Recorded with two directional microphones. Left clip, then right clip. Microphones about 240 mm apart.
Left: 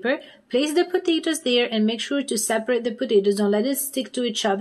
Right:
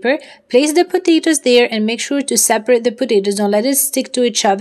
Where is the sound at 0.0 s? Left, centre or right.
Right.